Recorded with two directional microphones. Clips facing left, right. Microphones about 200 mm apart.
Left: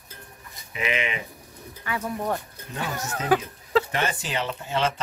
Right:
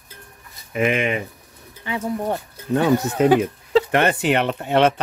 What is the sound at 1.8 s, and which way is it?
Speech, 25° right (ahead or behind).